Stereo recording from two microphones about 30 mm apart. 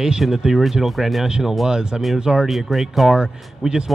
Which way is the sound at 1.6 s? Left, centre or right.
Right.